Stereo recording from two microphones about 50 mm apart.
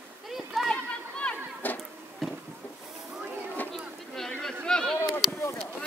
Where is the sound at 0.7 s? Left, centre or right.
Left.